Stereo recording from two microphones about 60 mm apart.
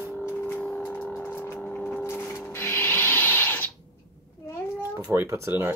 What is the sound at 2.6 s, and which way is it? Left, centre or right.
Rub, left.